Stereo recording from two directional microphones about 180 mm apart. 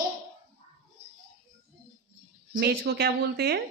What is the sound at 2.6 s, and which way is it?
A woman's voice, 60° right (ahead or behind).